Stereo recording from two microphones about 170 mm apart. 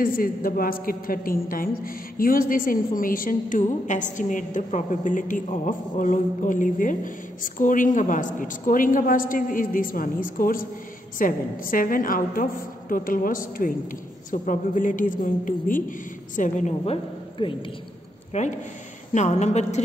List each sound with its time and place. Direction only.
0.0 s a woman's voice: 55° left (ahead or behind)